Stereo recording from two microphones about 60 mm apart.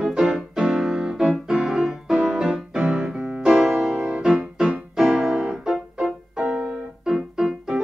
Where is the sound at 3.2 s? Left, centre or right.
Right.